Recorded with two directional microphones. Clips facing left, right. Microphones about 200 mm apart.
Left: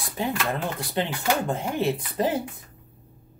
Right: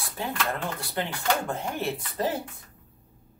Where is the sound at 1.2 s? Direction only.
10° left (ahead or behind).